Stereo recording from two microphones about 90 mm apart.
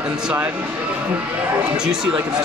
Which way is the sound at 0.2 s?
15° right (ahead or behind).